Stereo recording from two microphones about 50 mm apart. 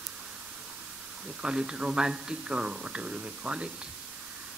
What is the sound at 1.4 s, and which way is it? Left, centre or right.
Speech, centre.